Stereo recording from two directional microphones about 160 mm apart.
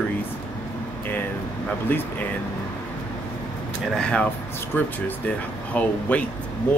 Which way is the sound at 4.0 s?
5° left (ahead or behind).